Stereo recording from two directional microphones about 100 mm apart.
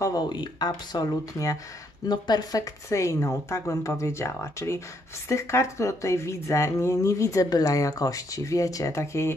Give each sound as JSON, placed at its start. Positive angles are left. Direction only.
{"t": 0.0, "sound": "speech", "side_deg": 45}
{"t": 0.7, "sound": "speech", "side_deg": 35}